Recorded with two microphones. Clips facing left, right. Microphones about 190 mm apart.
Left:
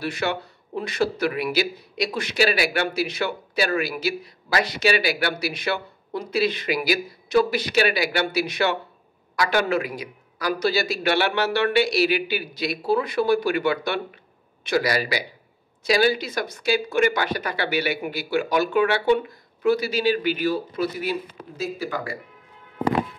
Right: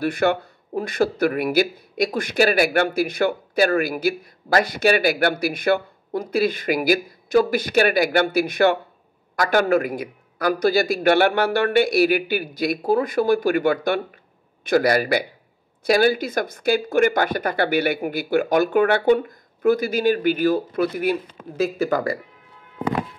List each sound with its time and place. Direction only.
0.0 s speech: 50° right (ahead or behind)